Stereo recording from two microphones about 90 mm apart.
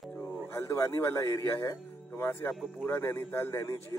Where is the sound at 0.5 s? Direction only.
30° left (ahead or behind).